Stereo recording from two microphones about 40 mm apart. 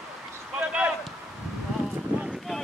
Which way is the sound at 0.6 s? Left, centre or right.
Right.